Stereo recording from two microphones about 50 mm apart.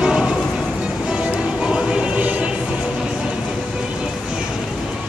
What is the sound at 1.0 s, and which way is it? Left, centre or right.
Music, right.